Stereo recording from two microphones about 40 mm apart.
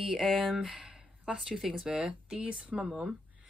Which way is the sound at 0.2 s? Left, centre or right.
Centre.